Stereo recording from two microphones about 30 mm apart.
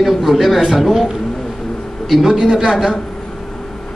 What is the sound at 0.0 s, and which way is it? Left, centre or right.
A man's voice, centre.